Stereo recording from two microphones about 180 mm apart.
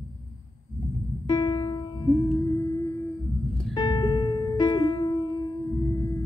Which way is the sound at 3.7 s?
25° left (ahead or behind).